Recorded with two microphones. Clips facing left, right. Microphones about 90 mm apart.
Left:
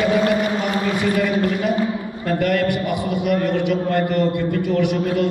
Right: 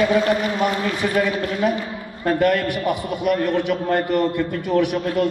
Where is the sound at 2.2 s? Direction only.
45° right (ahead or behind).